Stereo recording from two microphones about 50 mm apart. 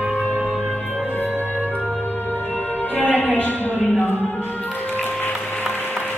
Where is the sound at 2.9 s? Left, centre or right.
Left.